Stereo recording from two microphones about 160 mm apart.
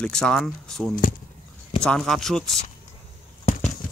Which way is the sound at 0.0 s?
5° left (ahead or behind).